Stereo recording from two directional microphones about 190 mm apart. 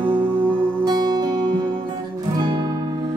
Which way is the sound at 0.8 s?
20° right (ahead or behind).